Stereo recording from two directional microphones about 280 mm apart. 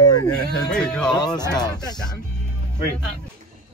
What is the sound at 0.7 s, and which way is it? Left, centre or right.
Speech, centre.